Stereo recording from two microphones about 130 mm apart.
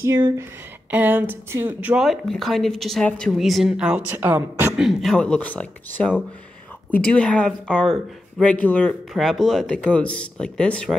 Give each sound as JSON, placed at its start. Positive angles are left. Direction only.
{"t": 0.4, "sound": "speech", "side_deg": -15}
{"t": 4.7, "sound": "speech", "side_deg": 0}
{"t": 9.1, "sound": "speech", "side_deg": 0}